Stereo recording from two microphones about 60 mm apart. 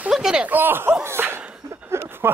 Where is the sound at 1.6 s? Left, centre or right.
Right.